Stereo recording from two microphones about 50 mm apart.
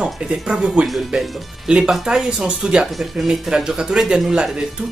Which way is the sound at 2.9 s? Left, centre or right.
Centre.